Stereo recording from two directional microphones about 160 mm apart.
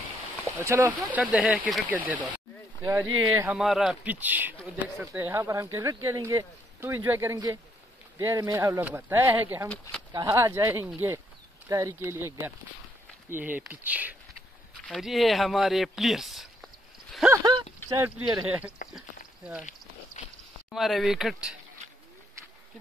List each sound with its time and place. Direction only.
0.6 s speech: 15° right (ahead or behind)
1.2 s speech: centre (ahead or behind); by 3.5 s 20° right (ahead or behind)
3.5 s speech: centre (ahead or behind)
17.3 s speech: 25° right (ahead or behind)
18.2 s speech: 5° right (ahead or behind)
20.2 s a sound: 45° left (ahead or behind)
20.7 s speech: centre (ahead or behind)